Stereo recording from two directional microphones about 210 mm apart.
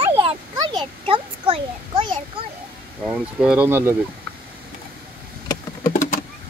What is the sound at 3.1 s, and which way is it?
Speech, 5° right (ahead or behind).